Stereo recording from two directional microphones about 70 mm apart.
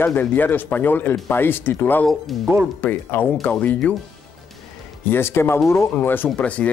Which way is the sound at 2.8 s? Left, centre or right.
Centre.